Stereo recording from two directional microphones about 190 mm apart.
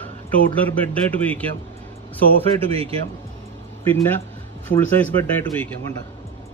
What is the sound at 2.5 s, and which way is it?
Speech, 30° right (ahead or behind).